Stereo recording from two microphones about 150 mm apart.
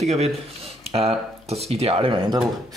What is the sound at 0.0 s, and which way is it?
Speech, 45° right (ahead or behind).